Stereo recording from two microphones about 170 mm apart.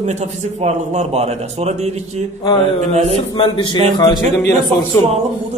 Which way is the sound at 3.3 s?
30° left (ahead or behind).